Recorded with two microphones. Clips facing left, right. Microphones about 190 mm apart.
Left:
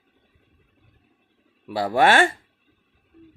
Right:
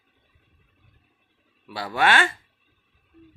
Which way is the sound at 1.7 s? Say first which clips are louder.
Left 5 dB; 30° left (ahead or behind).